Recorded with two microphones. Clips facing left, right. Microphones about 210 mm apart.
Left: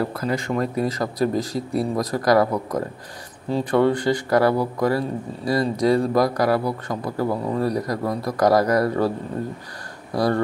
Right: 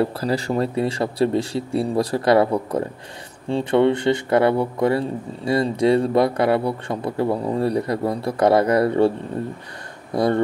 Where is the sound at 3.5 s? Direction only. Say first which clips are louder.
Right 2 dB; 25° right (ahead or behind).